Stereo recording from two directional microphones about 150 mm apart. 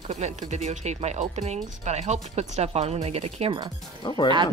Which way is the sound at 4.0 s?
30° left (ahead or behind).